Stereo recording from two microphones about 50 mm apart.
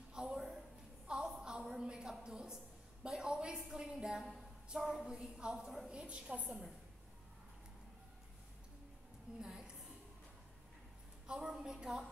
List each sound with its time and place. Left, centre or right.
0.1 s a sound: centre
3.5 s a woman's voice: centre
9.4 s a woman's voice: centre
11.2 s a woman's voice: centre